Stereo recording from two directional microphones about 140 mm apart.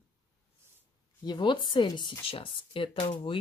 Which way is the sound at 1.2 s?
35° left (ahead or behind).